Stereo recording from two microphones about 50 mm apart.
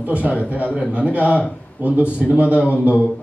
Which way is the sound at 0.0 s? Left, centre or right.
Right.